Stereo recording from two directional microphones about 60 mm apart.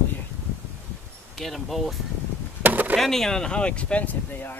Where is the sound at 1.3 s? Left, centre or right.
Centre.